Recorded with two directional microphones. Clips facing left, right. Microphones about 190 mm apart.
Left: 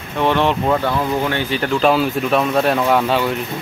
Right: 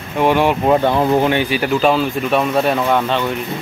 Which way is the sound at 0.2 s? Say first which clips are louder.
Right 2 dB; 10° right (ahead or behind).